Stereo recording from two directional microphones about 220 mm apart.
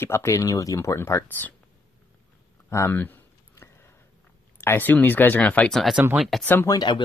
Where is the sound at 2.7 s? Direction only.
10° left (ahead or behind).